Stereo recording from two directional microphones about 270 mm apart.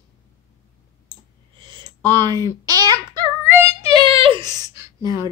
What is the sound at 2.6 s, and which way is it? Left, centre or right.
Child singing, centre.